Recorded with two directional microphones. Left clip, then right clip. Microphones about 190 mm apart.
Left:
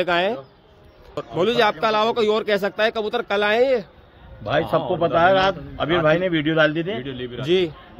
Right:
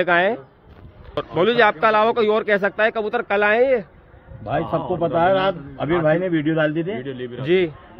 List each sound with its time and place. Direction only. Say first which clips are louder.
0.0 s a man's voice: right 3 dB; 15° left (ahead or behind)
5.2 s a man's voice: left 1 dB; centre (ahead or behind)
6.2 s speech: left 1 dB; 20° left (ahead or behind)
7.0 s speech: right 1 dB; 90° left
7.4 s speech: right 1 dB; 15° left (ahead or behind)